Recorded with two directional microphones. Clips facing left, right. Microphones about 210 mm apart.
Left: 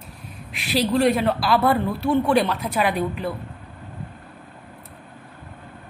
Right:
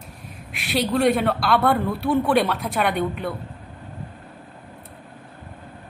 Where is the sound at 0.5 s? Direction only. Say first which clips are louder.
Left 1 dB; centre (ahead or behind).